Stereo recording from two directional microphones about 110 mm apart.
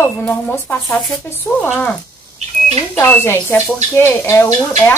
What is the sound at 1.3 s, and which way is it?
Speech, 20° left (ahead or behind).